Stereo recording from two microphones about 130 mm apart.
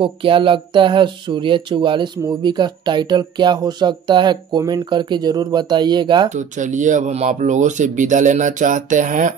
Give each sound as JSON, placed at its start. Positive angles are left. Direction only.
{"t": 0.0, "sound": "speech", "side_deg": -40}
{"t": 6.3, "sound": "speech", "side_deg": -70}